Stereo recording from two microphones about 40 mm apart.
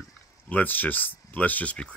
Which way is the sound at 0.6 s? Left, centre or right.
Left.